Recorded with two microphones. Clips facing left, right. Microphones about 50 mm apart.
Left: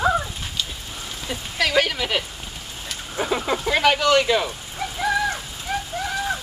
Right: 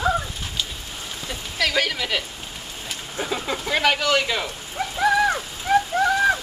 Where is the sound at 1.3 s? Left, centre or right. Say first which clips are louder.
Left 1 dB; centre.